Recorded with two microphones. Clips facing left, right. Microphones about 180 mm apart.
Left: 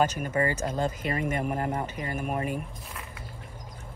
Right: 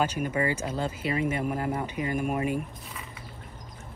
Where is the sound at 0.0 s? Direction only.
10° right (ahead or behind).